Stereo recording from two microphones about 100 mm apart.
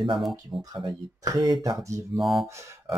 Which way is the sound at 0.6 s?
40° right (ahead or behind).